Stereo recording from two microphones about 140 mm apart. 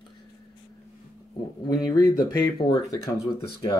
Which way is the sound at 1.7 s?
25° left (ahead or behind).